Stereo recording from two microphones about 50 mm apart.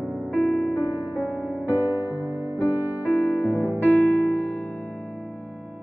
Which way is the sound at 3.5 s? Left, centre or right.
Right.